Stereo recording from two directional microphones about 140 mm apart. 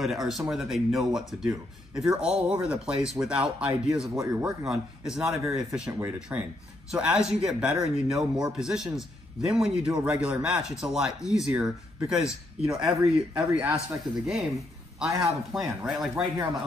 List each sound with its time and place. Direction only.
0.0 s speech: centre (ahead or behind)
4.1 s speech: 20° right (ahead or behind)
4.5 s speech: 5° right (ahead or behind)
5.9 s speech: 20° right (ahead or behind)
6.1 s speech: 5° right (ahead or behind)
15.5 s speech: centre (ahead or behind)